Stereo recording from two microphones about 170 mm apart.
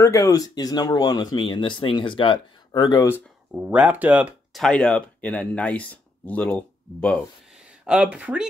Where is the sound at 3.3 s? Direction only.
5° right (ahead or behind).